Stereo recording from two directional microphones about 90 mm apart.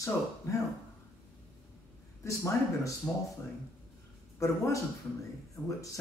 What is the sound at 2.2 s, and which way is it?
Speech, 35° left (ahead or behind).